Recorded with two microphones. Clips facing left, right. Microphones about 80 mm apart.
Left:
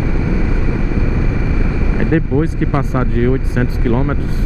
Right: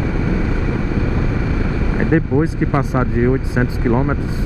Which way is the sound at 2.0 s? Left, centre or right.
Centre.